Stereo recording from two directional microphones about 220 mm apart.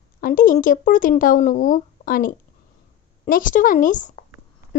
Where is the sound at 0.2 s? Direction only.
40° left (ahead or behind).